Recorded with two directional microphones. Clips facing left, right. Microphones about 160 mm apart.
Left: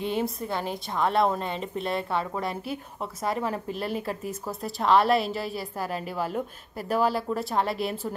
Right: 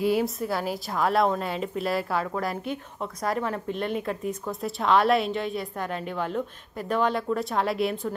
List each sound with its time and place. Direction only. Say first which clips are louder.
0.0 s a woman's voice: right 4 dB; 5° right (ahead or behind)